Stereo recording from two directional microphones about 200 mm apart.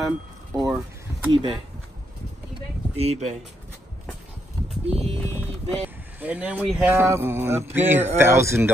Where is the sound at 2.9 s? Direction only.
30° right (ahead or behind).